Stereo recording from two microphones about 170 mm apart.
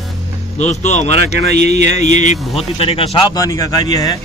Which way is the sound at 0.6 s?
40° left (ahead or behind).